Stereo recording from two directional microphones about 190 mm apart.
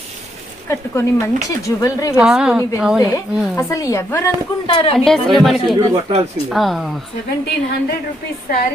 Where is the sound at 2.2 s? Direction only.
5° right (ahead or behind).